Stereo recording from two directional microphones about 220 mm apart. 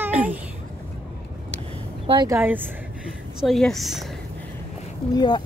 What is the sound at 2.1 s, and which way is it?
Speech, 15° right (ahead or behind).